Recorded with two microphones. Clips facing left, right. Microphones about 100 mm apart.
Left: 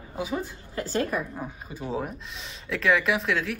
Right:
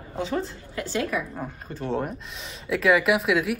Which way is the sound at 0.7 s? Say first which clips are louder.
Even; 40° left (ahead or behind).